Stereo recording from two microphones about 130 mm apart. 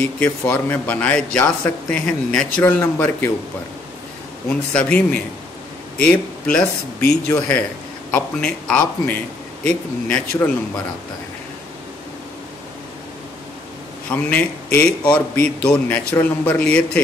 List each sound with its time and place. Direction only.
0.2 s a man's voice: 15° left (ahead or behind)
4.5 s a man's voice: 10° left (ahead or behind)
14.1 s a man's voice: 10° left (ahead or behind)